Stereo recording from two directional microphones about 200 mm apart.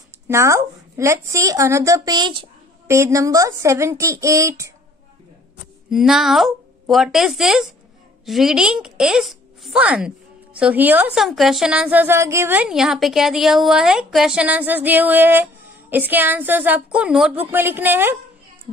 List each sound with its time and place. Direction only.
0.3 s a woman's voice: 15° right (ahead or behind)
5.9 s a woman's voice: centre (ahead or behind)